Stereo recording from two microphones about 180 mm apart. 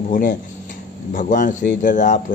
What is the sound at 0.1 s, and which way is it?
Speech, 50° left (ahead or behind).